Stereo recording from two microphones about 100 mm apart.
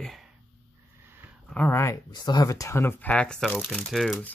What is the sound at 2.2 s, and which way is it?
Speech, 45° left (ahead or behind).